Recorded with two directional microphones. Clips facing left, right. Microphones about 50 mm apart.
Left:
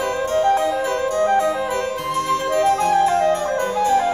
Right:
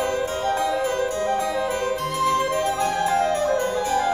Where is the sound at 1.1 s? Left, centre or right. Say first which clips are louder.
Left 6 dB; left.